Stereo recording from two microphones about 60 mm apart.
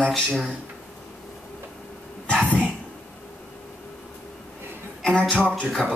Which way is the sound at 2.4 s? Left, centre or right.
Right.